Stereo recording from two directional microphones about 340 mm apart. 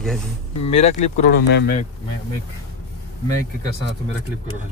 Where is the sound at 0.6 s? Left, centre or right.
Centre.